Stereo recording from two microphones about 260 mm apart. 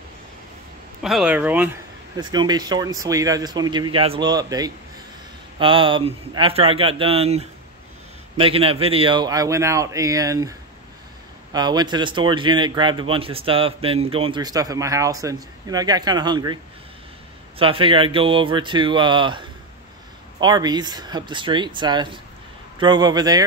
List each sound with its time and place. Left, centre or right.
1.0 s a man's voice: centre
11.5 s a man's voice: centre
17.6 s a man's voice: right